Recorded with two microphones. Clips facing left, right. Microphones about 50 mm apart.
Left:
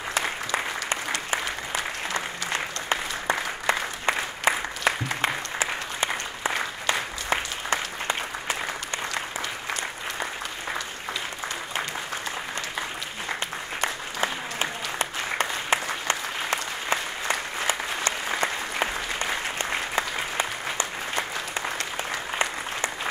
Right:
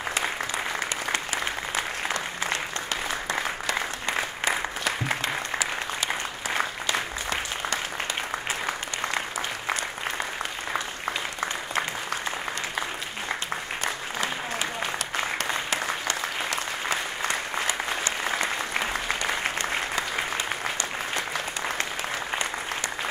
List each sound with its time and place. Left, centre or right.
2.5 s applause: left
13.7 s applause: left